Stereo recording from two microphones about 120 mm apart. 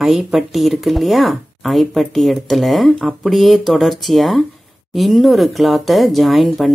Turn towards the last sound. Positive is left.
turn(degrees=0)  # may be behind; listen again after turning